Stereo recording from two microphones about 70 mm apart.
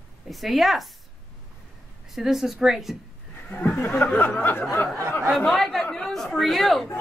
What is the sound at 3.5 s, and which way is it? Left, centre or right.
Speech, left.